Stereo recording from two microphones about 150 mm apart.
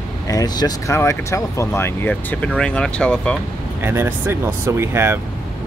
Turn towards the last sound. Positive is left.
turn(degrees=-15)  # may be behind; listen again after turning